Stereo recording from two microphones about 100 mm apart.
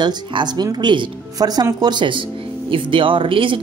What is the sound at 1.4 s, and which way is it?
Speech, 40° right (ahead or behind).